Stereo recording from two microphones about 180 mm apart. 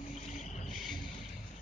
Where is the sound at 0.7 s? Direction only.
Centre (ahead or behind).